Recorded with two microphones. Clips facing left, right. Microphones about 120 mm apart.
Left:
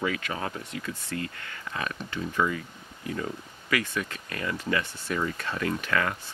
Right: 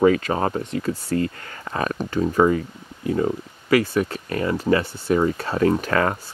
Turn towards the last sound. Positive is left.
turn(degrees=-40)  # may be behind; listen again after turning